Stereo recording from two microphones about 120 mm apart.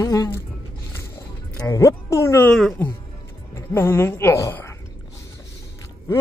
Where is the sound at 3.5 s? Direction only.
20° left (ahead or behind).